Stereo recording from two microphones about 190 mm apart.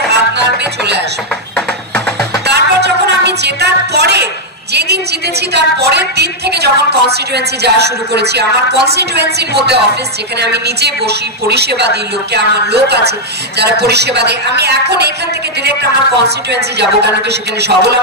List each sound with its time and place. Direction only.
2.4 s music: 60° right (ahead or behind)
4.7 s a sound: 60° right (ahead or behind)
5.5 s a woman's voice: 60° right (ahead or behind)
17.6 s a woman's voice: 60° right (ahead or behind)